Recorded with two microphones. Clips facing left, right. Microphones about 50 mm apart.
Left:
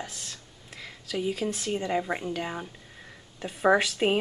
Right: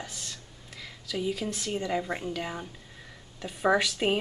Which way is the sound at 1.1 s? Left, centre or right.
Centre.